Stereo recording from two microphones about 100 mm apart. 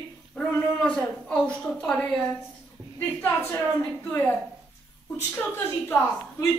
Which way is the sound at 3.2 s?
20° left (ahead or behind).